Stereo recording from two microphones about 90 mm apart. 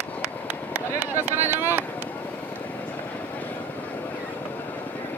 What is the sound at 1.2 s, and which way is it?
Vehicle, 25° right (ahead or behind).